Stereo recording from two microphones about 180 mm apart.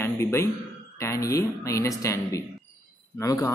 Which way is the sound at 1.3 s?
15° left (ahead or behind).